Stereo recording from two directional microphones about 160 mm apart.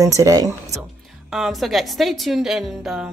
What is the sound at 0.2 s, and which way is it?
Speech, 20° right (ahead or behind).